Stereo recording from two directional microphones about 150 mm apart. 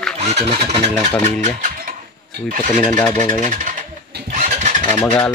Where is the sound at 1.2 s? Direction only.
65° right (ahead or behind).